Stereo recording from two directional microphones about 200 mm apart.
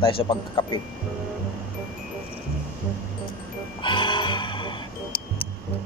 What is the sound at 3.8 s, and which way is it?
Music, 25° left (ahead or behind).